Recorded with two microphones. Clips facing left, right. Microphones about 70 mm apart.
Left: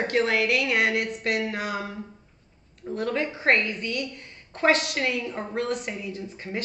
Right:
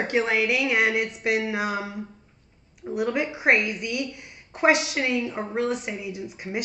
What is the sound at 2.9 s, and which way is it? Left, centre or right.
A woman's voice, centre.